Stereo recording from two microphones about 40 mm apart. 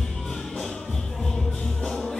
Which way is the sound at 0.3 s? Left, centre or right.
Centre.